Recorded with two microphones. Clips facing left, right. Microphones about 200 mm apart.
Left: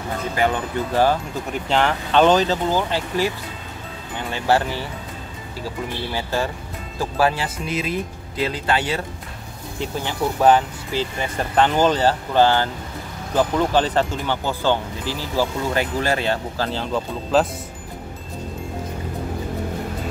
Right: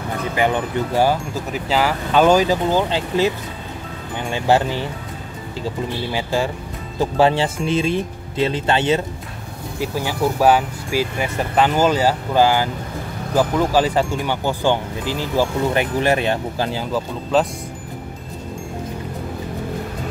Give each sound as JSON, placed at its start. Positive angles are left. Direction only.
{"t": 0.9, "sound": "speech", "side_deg": -10}
{"t": 4.3, "sound": "speech", "side_deg": -20}
{"t": 6.1, "sound": "speech", "side_deg": -15}
{"t": 9.8, "sound": "speech", "side_deg": -10}
{"t": 16.9, "sound": "speech", "side_deg": 0}